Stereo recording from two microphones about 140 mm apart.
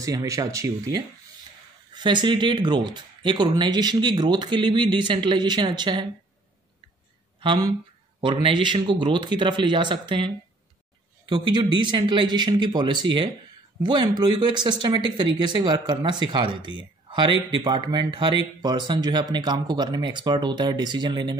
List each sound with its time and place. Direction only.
0.0 s speech: 25° right (ahead or behind)
7.3 s speech: 35° right (ahead or behind)